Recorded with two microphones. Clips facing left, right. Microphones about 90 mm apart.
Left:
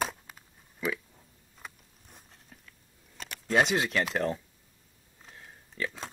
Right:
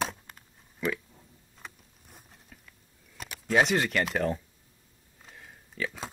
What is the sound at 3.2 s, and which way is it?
Speech, 5° right (ahead or behind).